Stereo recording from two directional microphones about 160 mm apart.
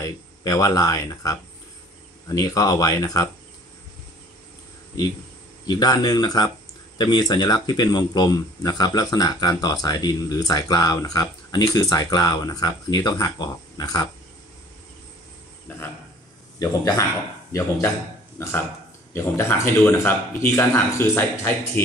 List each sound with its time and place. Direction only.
0.0 s speech: 20° left (ahead or behind)
5.7 s speech: 25° left (ahead or behind)
16.5 s speech: 25° left (ahead or behind)